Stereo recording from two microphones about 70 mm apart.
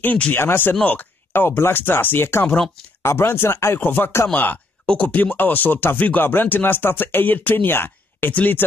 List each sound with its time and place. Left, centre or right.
0.0 s speech: left